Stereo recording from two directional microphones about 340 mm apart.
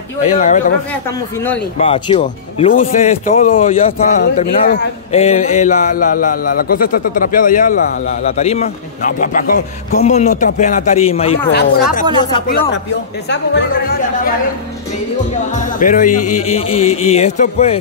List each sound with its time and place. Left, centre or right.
0.2 s speech: left
1.8 s speech: centre
4.2 s speech: left
12.2 s speech: centre
13.3 s speech: left
15.5 s speech: left